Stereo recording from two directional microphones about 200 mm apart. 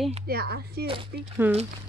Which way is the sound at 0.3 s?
50° right (ahead or behind).